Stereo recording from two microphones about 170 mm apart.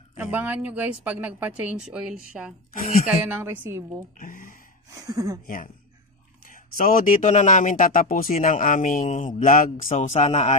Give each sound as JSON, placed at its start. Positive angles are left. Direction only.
{"t": 0.2, "sound": "speech", "side_deg": -10}
{"t": 4.2, "sound": "speech", "side_deg": 55}
{"t": 4.9, "sound": "speech", "side_deg": -20}
{"t": 6.4, "sound": "speech", "side_deg": 55}
{"t": 9.4, "sound": "speech", "side_deg": 55}